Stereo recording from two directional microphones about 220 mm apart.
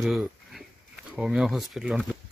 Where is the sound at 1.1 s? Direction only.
Centre (ahead or behind).